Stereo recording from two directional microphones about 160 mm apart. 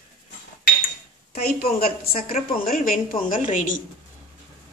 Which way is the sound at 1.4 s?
65° left (ahead or behind).